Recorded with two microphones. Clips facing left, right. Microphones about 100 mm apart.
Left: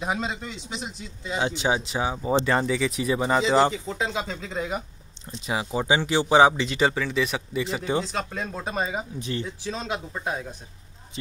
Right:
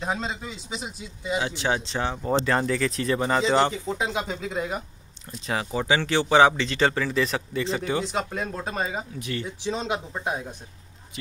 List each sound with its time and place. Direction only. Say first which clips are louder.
0.0 s speech: left 1 dB; 5° left (ahead or behind)
1.4 s speech: left 5 dB; 20° left (ahead or behind)
3.7 s speech: right 1 dB; 10° right (ahead or behind)
5.5 s speech: even; 15° left (ahead or behind)
7.0 s speech: right 1 dB; centre (ahead or behind)
7.7 s speech: left 1 dB; 20° left (ahead or behind)
8.0 s speech: right 2 dB; 15° right (ahead or behind); by 9.0 s 5° left (ahead or behind)
9.2 s speech: left 1 dB; 25° left (ahead or behind)
9.7 s speech: right 5 dB; 15° right (ahead or behind)